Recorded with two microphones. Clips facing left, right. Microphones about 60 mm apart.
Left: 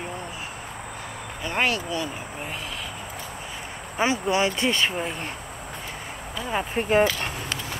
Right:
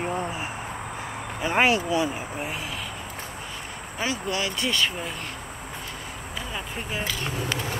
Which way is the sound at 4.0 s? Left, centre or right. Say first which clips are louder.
Left 6 dB; left.